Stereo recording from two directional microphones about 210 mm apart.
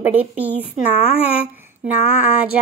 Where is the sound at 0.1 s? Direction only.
10° right (ahead or behind).